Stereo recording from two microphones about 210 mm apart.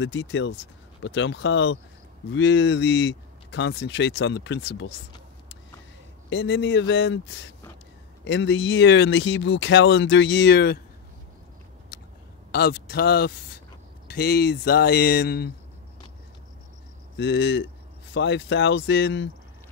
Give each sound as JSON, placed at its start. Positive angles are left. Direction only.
{"t": 0.0, "sound": "speech", "side_deg": 65}
{"t": 6.3, "sound": "speech", "side_deg": 60}
{"t": 8.2, "sound": "speech", "side_deg": 60}
{"t": 12.4, "sound": "speech", "side_deg": 50}
{"t": 17.2, "sound": "speech", "side_deg": 55}